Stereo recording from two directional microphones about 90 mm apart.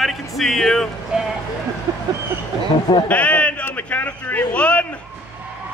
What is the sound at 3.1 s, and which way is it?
Basketball bounce, 15° left (ahead or behind).